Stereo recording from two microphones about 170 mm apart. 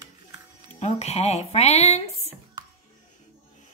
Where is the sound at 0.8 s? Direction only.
40° left (ahead or behind).